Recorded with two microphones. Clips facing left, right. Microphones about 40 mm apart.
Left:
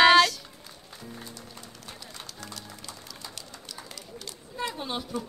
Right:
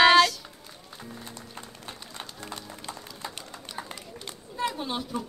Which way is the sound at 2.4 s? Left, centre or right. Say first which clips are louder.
Right 3 dB; right.